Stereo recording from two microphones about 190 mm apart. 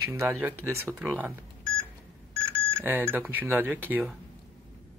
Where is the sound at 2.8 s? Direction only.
10° right (ahead or behind).